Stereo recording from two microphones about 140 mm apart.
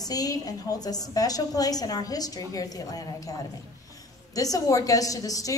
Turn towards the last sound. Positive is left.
turn(degrees=25)  # may be behind; listen again after turning